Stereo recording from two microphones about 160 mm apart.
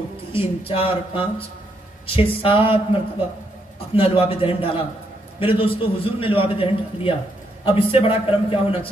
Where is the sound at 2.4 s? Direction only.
35° left (ahead or behind).